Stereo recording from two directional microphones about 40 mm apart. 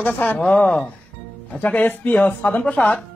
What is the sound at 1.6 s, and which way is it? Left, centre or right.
Speech, left.